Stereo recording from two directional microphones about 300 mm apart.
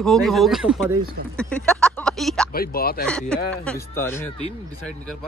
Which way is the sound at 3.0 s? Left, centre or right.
Centre.